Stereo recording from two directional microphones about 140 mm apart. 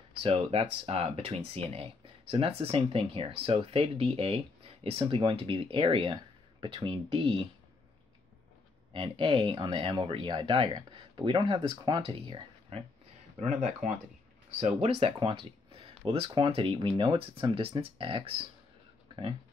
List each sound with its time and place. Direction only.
0.2 s speech: 45° right (ahead or behind)
8.9 s speech: 35° right (ahead or behind)
13.4 s speech: 60° right (ahead or behind)
14.8 s speech: 40° right (ahead or behind)